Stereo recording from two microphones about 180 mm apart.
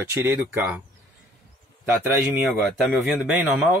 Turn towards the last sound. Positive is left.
turn(degrees=-5)  # may be behind; listen again after turning